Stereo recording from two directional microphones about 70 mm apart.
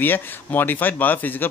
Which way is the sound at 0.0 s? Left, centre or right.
Left.